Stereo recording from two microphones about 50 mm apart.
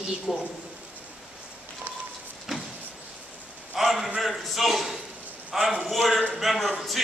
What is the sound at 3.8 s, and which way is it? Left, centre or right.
A man's voice, centre.